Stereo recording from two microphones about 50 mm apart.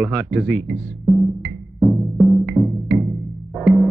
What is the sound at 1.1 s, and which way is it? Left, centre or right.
Music, centre.